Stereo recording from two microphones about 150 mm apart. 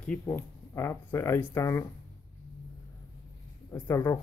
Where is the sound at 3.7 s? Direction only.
20° left (ahead or behind).